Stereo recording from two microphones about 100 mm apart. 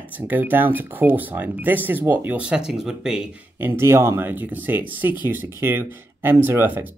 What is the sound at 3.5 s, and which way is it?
Speech, 20° right (ahead or behind).